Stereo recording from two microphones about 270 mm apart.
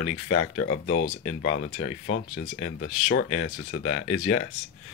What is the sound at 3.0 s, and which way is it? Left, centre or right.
Speech, left.